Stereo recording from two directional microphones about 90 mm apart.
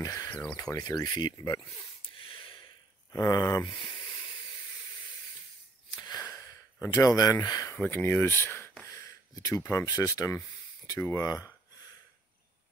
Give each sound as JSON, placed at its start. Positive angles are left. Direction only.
{"t": 0.0, "sound": "speech", "side_deg": 40}
{"t": 0.3, "sound": "speech", "side_deg": 20}
{"t": 0.6, "sound": "speech", "side_deg": 40}
{"t": 2.0, "sound": "a sound", "side_deg": 80}
{"t": 3.1, "sound": "speech", "side_deg": 35}
{"t": 5.9, "sound": "wheeze", "side_deg": 50}
{"t": 6.9, "sound": "speech", "side_deg": 40}
{"t": 7.7, "sound": "speech", "side_deg": 20}
{"t": 8.8, "sound": "a sound", "side_deg": 35}
{"t": 9.8, "sound": "speech", "side_deg": 40}